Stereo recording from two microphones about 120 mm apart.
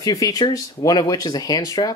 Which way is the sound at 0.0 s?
30° left (ahead or behind).